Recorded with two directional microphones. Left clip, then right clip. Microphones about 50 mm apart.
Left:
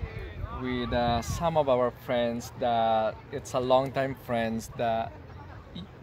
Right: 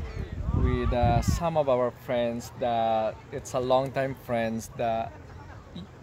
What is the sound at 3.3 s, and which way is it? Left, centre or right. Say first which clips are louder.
Speech: left 1 dB; right.